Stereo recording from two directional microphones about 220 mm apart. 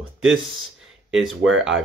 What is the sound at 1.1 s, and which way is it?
Speech, centre (ahead or behind).